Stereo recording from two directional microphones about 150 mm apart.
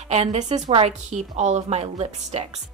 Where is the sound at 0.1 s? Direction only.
45° right (ahead or behind).